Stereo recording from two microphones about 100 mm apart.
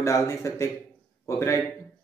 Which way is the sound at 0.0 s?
30° left (ahead or behind).